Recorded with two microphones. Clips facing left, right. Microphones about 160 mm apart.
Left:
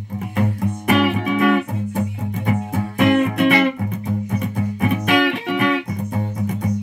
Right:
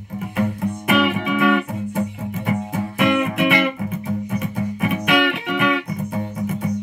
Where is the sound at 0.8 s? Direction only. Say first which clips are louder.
Left 1 dB; 40° left (ahead or behind).